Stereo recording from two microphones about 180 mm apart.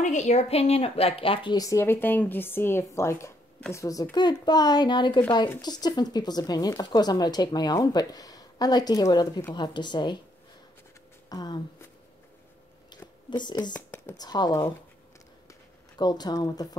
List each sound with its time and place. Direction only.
0.0 s speech: 40° left (ahead or behind); by 10.1 s 25° left (ahead or behind)
11.2 s speech: 20° left (ahead or behind)
13.4 s speech: 25° left (ahead or behind)
13.7 s speech: 15° left (ahead or behind)
16.0 s speech: 20° left (ahead or behind)